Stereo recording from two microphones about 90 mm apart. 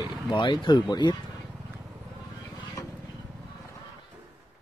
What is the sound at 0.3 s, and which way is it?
Speech, 65° left (ahead or behind).